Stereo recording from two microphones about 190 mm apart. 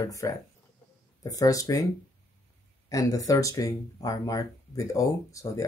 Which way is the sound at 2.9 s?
15° left (ahead or behind).